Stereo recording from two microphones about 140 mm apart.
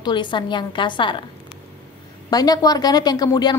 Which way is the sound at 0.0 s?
35° left (ahead or behind).